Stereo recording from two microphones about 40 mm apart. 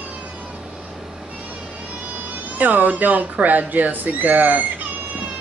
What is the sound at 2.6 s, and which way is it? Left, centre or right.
A woman's voice, right.